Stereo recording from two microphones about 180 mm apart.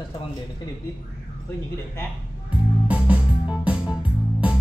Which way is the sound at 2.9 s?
5° right (ahead or behind).